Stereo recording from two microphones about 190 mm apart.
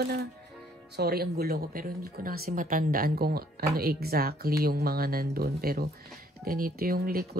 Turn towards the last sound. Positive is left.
turn(degrees=-50)  # may be behind; listen again after turning